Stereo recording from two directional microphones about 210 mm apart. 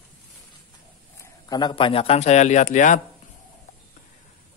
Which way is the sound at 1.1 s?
20° left (ahead or behind).